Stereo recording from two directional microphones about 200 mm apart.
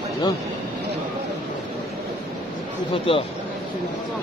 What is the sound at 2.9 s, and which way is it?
Speech, 25° left (ahead or behind).